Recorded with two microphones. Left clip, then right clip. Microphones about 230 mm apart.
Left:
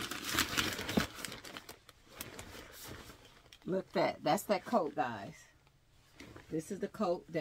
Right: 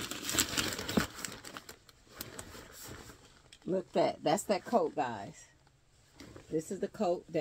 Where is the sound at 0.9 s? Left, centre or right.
Centre.